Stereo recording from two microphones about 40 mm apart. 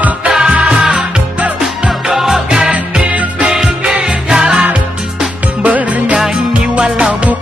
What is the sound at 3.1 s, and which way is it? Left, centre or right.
Music, right.